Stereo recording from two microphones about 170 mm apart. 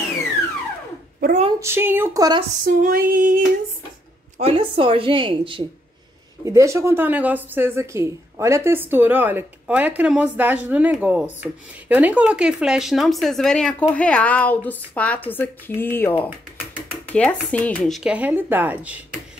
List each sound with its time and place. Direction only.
1.6 s a woman's voice: 15° right (ahead or behind)
2.6 s female singing: 55° right (ahead or behind)
4.4 s speech: 35° right (ahead or behind)
6.4 s a woman's voice: 15° right (ahead or behind)